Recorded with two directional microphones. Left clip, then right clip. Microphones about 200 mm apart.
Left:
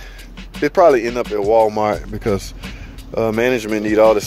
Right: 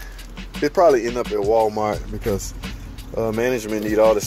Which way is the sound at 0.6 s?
25° left (ahead or behind).